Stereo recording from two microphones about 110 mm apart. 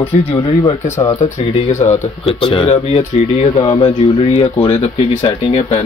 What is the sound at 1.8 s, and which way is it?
Speech, 90° left.